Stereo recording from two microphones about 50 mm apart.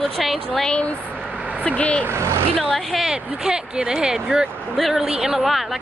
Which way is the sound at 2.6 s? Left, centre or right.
Centre.